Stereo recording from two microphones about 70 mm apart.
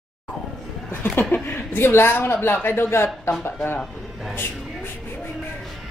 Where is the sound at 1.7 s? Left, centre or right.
Left.